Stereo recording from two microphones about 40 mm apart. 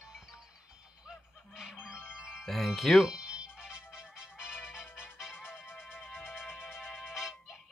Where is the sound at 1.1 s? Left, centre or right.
Centre.